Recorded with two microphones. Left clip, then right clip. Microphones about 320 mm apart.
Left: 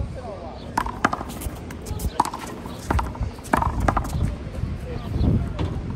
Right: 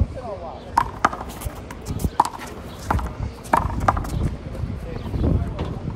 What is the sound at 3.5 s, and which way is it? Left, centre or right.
Clip-clop, centre.